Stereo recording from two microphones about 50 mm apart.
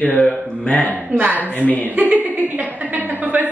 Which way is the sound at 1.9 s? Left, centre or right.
Right.